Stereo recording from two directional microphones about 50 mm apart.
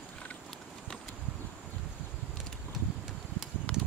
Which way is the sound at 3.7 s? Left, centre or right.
Left.